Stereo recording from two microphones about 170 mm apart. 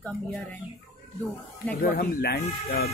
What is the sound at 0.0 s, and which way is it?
Speech, 10° left (ahead or behind).